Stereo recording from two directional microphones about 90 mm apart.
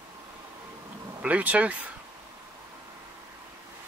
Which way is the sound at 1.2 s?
15° right (ahead or behind).